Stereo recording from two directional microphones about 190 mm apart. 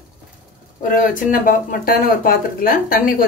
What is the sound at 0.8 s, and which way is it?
Speech, 45° left (ahead or behind).